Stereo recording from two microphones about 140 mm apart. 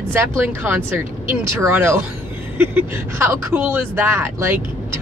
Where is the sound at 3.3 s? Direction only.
15° right (ahead or behind).